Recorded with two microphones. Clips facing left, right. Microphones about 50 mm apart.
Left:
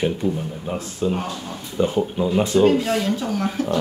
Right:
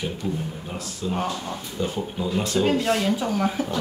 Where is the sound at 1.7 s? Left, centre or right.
Left.